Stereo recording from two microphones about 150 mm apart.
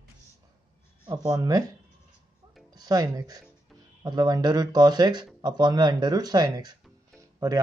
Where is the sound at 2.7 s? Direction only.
25° right (ahead or behind).